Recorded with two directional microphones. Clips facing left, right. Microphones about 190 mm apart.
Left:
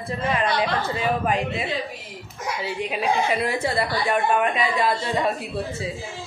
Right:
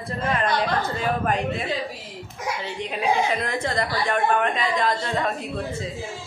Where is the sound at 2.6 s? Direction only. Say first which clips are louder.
Left 1 dB; 10° left (ahead or behind).